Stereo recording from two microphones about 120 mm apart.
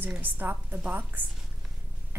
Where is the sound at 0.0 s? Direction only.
15° right (ahead or behind).